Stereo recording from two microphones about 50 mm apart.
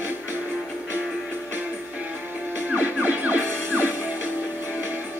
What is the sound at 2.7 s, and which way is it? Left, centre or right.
Music, right.